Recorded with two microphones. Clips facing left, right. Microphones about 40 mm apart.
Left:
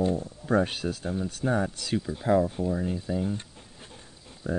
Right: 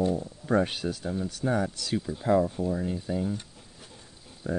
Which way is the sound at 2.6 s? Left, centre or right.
Centre.